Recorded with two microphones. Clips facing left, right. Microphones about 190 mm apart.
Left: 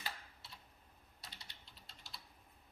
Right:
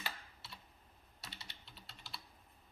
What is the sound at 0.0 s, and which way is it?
Typing, 70° right (ahead or behind).